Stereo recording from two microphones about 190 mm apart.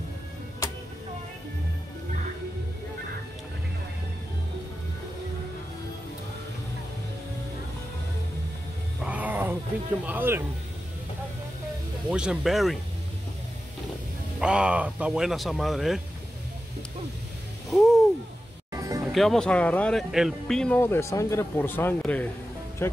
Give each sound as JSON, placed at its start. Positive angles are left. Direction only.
{"t": 9.0, "sound": "a sound", "side_deg": -10}
{"t": 10.0, "sound": "speech", "side_deg": -10}
{"t": 12.1, "sound": "speech", "side_deg": -5}
{"t": 14.4, "sound": "speech", "side_deg": -5}
{"t": 17.6, "sound": "a sound", "side_deg": 0}
{"t": 18.7, "sound": "music", "side_deg": -20}
{"t": 19.1, "sound": "speech", "side_deg": 0}